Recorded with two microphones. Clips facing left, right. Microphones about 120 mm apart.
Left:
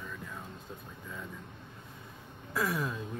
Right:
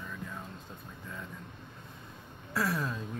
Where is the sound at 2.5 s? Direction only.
5° left (ahead or behind).